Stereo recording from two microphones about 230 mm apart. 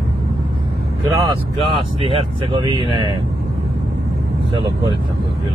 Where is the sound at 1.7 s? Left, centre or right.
Right.